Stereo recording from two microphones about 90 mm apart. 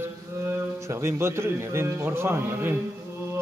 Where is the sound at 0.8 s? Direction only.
30° right (ahead or behind).